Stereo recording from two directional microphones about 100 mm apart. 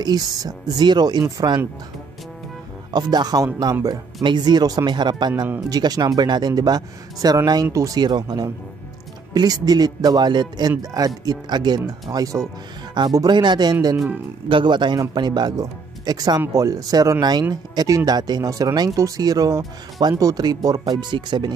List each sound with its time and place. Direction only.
0.0 s speech: 40° right (ahead or behind)
2.9 s speech: 45° right (ahead or behind)